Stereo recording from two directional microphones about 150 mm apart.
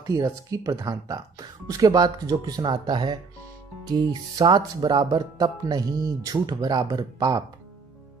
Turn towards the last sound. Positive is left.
turn(degrees=-25)  # may be behind; listen again after turning